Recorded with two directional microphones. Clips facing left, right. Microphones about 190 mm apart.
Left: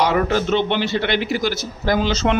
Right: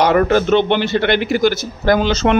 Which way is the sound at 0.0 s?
60° right (ahead or behind).